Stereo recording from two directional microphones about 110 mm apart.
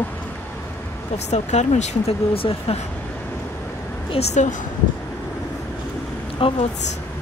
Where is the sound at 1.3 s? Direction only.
90° left; by 2.9 s 60° left (ahead or behind).